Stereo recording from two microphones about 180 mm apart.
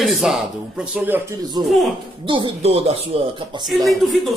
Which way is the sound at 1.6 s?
Centre (ahead or behind).